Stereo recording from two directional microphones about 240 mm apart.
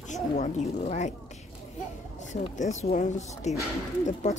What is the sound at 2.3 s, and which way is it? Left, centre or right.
Speech, left.